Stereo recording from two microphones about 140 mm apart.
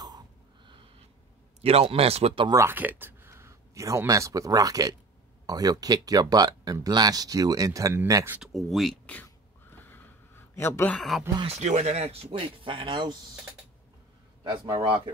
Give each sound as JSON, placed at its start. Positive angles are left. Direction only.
{"t": 1.6, "sound": "speech", "side_deg": -45}
{"t": 2.4, "sound": "speech", "side_deg": -20}
{"t": 8.4, "sound": "a sound", "side_deg": 0}
{"t": 11.0, "sound": "speech", "side_deg": 0}
{"t": 11.4, "sound": "speech", "side_deg": -55}